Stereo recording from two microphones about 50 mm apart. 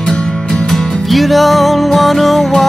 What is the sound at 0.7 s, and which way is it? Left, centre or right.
Music, centre.